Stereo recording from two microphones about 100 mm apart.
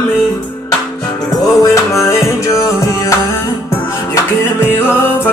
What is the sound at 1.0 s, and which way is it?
Music, 40° left (ahead or behind).